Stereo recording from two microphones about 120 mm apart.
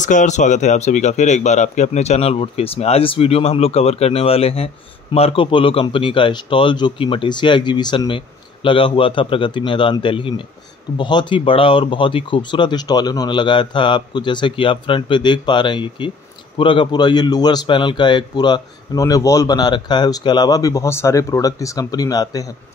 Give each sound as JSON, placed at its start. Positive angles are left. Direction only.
{"t": 0.0, "sound": "a man's voice", "side_deg": 90}